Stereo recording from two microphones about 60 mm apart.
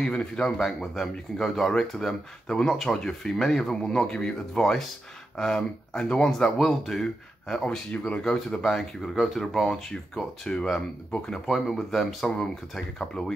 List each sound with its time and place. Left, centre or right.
0.0 s speech: centre
7.9 s speech: left
8.2 s speech: centre
9.1 s speech: centre